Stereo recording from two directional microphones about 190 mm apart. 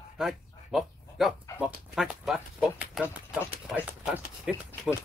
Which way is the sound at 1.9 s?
Centre (ahead or behind).